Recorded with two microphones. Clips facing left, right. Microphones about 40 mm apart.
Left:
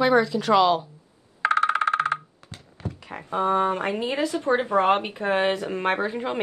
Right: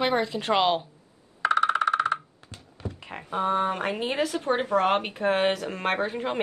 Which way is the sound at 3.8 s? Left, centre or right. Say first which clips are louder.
Left 2 dB; right.